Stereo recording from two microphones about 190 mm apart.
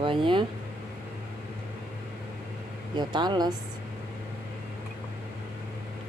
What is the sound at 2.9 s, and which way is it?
Speech, 25° right (ahead or behind).